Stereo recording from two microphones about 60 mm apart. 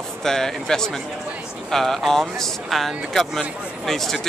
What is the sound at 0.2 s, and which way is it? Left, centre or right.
Speech, centre.